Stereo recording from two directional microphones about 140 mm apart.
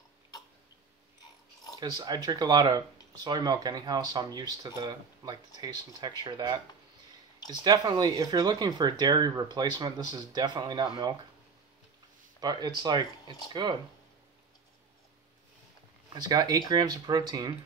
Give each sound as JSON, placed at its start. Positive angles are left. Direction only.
{"t": 1.8, "sound": "speech", "side_deg": -30}
{"t": 7.6, "sound": "speech", "side_deg": -30}
{"t": 12.4, "sound": "speech", "side_deg": -30}
{"t": 16.1, "sound": "speech", "side_deg": -30}